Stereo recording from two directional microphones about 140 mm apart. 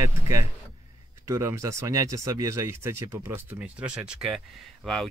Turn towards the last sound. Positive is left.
turn(degrees=5)  # may be behind; listen again after turning